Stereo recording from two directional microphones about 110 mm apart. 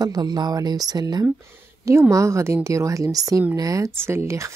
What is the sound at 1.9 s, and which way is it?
A woman's voice, 25° right (ahead or behind).